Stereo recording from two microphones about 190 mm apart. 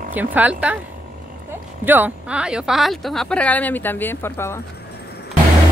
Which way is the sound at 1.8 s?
10° right (ahead or behind).